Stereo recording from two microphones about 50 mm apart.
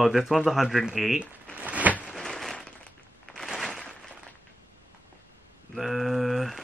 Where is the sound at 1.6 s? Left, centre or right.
Right.